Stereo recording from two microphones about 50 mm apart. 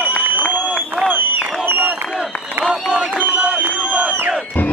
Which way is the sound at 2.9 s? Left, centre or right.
Right.